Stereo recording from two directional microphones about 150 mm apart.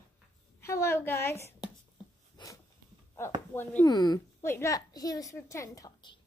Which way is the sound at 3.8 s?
25° left (ahead or behind).